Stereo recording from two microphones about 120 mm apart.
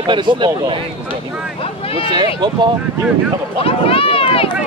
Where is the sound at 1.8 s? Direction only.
55° left (ahead or behind).